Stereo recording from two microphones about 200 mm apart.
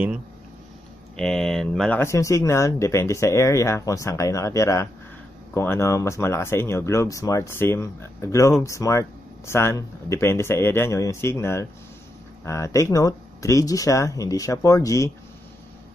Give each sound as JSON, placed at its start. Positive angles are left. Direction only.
{"t": 1.1, "sound": "speech", "side_deg": 5}